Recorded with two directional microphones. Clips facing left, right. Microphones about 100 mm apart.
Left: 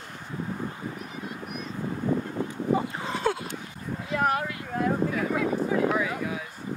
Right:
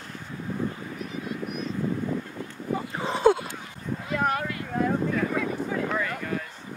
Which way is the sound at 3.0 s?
Centre (ahead or behind).